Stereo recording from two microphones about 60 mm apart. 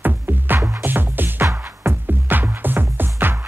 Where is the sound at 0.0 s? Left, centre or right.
Right.